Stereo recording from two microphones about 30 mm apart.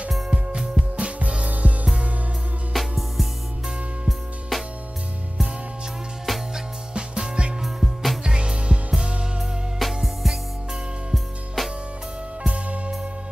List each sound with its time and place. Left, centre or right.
0.3 s music: right
1.5 s music: right
2.7 s music: centre
4.5 s music: centre
6.3 s music: centre
6.9 s music: right
7.6 s music: centre
8.2 s music: right
9.8 s music: centre
11.6 s music: centre
12.4 s music: right